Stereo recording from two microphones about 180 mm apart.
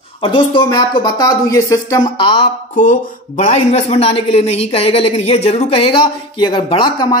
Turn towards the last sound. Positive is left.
turn(degrees=25)  # may be behind; listen again after turning